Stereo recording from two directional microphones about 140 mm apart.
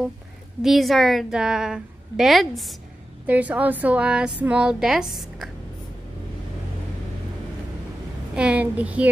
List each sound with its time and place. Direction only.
0.6 s a woman's voice: centre (ahead or behind)
3.3 s a woman's voice: 10° right (ahead or behind)
8.4 s a woman's voice: 10° right (ahead or behind)